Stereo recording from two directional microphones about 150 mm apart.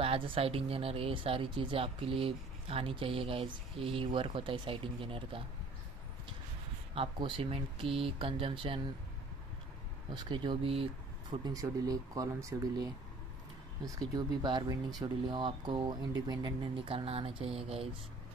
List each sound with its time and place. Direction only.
0.0 s speech: 40° right (ahead or behind)
7.0 s speech: 35° right (ahead or behind)
10.1 s speech: 30° right (ahead or behind)
11.4 s speech: 25° right (ahead or behind)